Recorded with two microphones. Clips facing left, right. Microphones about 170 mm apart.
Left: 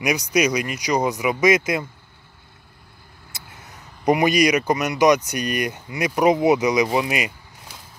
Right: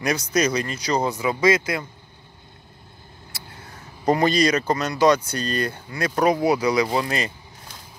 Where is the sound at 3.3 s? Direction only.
20° left (ahead or behind).